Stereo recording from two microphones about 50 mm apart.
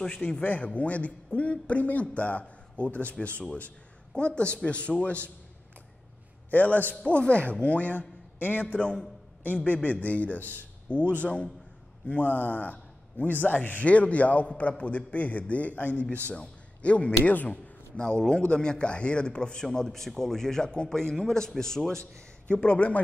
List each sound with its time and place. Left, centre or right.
0.4 s a man's voice: left
6.5 s a man's voice: left
8.4 s a man's voice: left
8.6 s a man's voice: left
9.5 s a man's voice: left
12.1 s a man's voice: left
17.9 s speech: centre
22.5 s a man's voice: left